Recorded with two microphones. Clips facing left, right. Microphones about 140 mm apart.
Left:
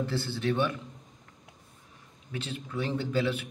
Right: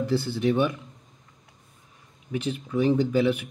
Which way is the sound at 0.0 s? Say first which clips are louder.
Right 6 dB; 15° right (ahead or behind).